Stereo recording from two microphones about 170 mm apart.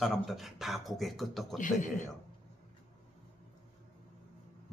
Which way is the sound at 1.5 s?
50° left (ahead or behind).